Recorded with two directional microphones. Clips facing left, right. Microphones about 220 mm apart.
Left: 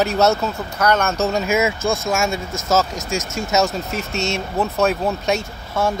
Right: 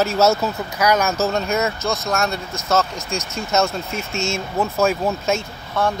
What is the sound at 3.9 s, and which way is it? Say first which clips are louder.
Speech: left 1 dB; 40° left (ahead or behind).